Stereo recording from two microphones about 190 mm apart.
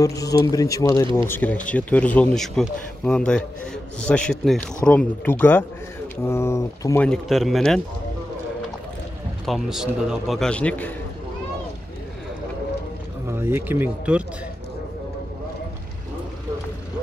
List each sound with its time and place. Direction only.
0.0 s speech: 20° left (ahead or behind)
7.1 s a man's voice: centre (ahead or behind)
9.5 s a man's voice: centre (ahead or behind)
13.3 s speech: 10° right (ahead or behind)